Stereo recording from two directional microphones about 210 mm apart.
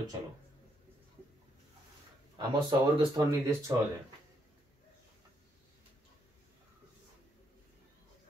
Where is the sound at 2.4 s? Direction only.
20° right (ahead or behind).